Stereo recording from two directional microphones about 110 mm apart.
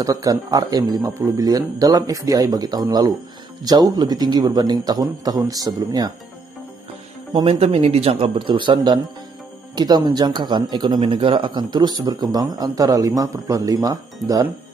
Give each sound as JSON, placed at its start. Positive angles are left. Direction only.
{"t": 0.0, "sound": "speech", "side_deg": -35}
{"t": 7.4, "sound": "speech", "side_deg": -65}